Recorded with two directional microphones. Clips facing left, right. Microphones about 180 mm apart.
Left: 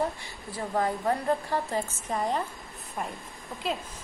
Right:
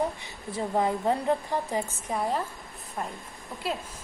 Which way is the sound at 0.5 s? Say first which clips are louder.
Right 2 dB; 20° right (ahead or behind).